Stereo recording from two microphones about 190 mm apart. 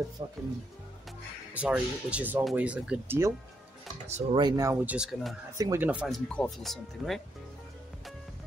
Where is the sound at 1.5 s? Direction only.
5° right (ahead or behind).